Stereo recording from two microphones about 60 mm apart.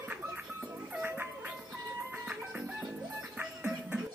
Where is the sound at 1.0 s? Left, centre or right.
Right.